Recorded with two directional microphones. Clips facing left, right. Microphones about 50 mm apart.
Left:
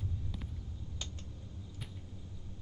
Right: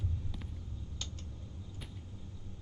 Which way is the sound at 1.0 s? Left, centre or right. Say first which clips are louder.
Even; left.